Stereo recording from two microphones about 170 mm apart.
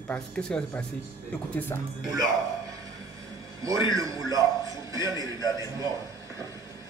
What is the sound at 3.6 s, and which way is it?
A man's voice, 20° right (ahead or behind).